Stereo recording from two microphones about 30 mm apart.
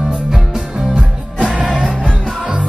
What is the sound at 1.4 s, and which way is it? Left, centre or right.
Music, right.